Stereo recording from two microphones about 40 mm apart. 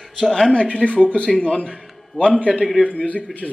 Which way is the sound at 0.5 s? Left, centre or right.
Left.